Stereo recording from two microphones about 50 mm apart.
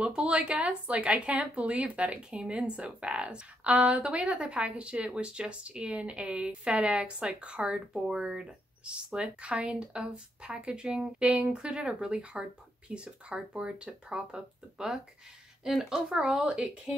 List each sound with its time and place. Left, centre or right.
0.0 s speech: centre